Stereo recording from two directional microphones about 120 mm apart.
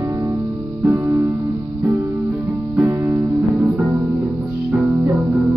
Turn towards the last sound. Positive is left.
turn(degrees=-15)  # may be behind; listen again after turning